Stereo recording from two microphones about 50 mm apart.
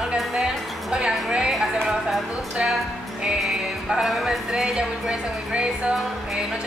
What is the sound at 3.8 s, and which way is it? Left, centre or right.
A woman's voice, centre.